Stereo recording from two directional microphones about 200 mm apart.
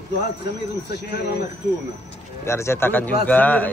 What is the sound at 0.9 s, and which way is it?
Speech, 55° left (ahead or behind).